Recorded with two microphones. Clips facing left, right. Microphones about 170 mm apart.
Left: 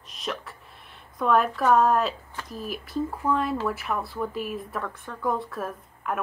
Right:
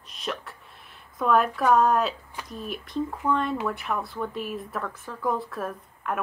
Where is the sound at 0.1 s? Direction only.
Centre (ahead or behind).